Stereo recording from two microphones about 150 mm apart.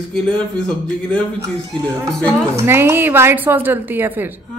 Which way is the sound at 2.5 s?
15° right (ahead or behind).